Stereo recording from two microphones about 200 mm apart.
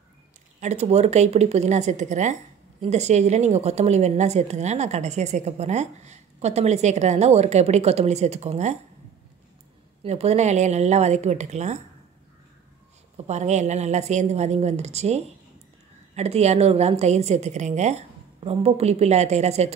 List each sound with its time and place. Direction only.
0.6 s a woman's voice: 35° right (ahead or behind)
10.0 s a woman's voice: 30° right (ahead or behind)
13.3 s a woman's voice: 35° right (ahead or behind)